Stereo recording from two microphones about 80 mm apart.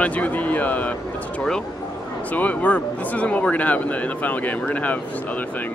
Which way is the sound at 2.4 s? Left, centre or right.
Centre.